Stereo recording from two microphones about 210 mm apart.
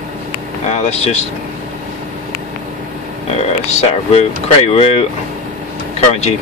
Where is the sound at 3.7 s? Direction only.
30° left (ahead or behind).